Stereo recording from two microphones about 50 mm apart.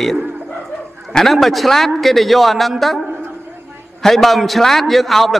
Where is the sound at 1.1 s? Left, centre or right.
Centre.